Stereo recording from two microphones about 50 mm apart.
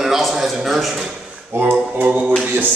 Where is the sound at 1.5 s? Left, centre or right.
Right.